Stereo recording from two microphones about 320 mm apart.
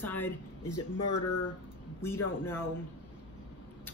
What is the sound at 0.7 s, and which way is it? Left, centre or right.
Speech, left.